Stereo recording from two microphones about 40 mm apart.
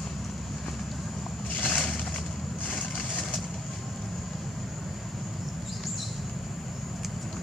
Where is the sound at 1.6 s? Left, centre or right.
Centre.